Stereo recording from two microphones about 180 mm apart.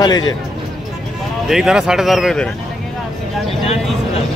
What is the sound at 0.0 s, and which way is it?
Speech, 20° left (ahead or behind).